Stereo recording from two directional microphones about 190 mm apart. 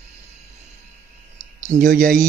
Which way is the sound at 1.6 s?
45° right (ahead or behind).